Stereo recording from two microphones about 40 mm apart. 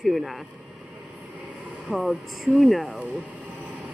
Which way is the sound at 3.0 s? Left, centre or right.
Right.